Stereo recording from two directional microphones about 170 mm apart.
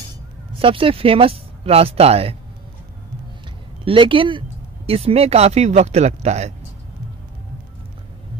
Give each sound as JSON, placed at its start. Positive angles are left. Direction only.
{"t": 0.5, "sound": "speech", "side_deg": -30}
{"t": 3.8, "sound": "speech", "side_deg": -30}